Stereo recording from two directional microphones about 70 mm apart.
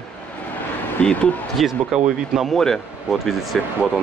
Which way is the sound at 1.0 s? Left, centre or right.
Centre.